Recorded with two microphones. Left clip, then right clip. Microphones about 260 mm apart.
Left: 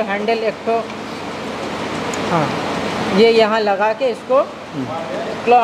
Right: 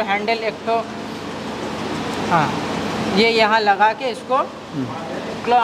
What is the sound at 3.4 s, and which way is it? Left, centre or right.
Speech, right.